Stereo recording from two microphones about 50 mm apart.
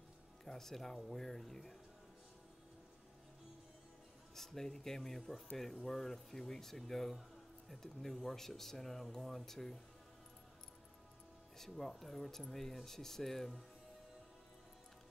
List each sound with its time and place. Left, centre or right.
0.5 s speech: centre
4.4 s speech: centre
11.5 s speech: centre